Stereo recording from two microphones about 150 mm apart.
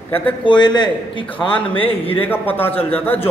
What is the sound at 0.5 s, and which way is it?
Speech, 30° left (ahead or behind).